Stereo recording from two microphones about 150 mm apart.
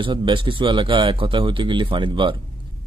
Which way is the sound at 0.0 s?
30° right (ahead or behind).